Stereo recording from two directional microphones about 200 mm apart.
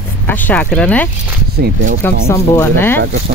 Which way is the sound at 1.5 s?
55° right (ahead or behind).